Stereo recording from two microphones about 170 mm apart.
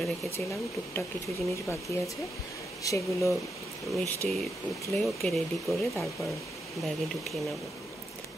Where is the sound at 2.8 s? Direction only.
20° left (ahead or behind).